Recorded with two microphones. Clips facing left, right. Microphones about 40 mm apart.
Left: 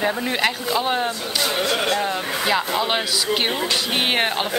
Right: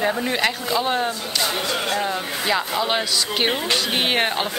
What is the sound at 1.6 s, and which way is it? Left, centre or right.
Speech, left.